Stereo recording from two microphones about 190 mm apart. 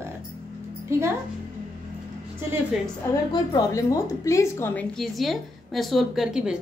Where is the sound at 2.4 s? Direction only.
10° right (ahead or behind).